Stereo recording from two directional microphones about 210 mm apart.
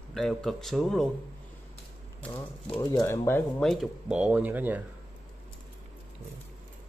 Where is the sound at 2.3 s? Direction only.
25° left (ahead or behind).